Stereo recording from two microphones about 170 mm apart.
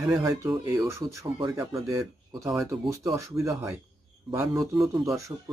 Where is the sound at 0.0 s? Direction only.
20° right (ahead or behind).